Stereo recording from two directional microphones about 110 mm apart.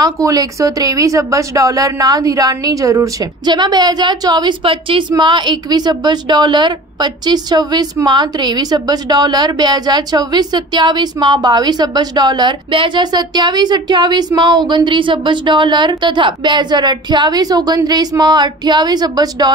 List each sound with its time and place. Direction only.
0.0 s a woman's voice: 35° right (ahead or behind)